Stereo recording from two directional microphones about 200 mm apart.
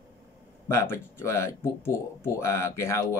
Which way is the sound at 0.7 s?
10° left (ahead or behind).